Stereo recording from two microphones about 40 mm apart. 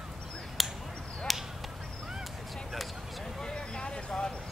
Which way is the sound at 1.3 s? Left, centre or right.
Centre.